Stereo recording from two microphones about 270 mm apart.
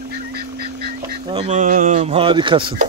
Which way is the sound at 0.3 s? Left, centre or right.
Right.